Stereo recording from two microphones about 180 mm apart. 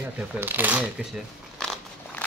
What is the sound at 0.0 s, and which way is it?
Speech, 10° right (ahead or behind).